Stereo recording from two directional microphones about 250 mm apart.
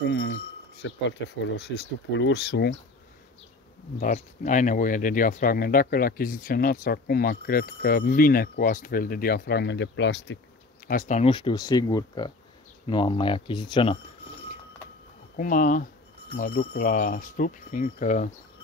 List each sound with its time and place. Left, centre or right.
0.1 s speech: left
4.0 s speech: left
10.9 s speech: left
15.3 s speech: left